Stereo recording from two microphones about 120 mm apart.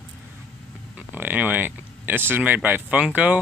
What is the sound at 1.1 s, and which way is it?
Speech, 15° right (ahead or behind).